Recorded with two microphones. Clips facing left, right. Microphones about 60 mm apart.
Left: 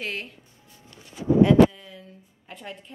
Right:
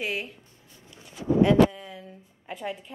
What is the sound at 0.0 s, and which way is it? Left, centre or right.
Speech, centre.